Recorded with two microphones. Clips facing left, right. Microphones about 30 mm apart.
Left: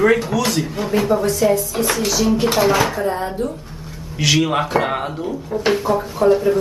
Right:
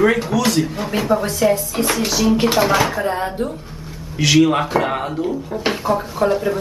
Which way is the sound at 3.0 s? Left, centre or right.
Right.